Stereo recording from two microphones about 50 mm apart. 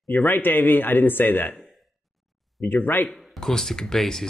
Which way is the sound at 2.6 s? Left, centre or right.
Left.